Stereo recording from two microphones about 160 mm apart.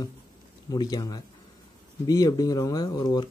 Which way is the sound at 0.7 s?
25° left (ahead or behind).